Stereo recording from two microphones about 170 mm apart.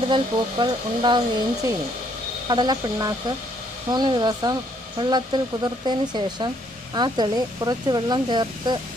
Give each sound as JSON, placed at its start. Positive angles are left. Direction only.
{"t": 0.1, "sound": "speech", "side_deg": -25}